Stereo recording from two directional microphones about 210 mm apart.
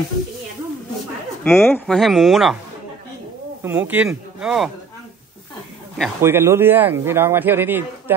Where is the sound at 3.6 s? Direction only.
10° right (ahead or behind).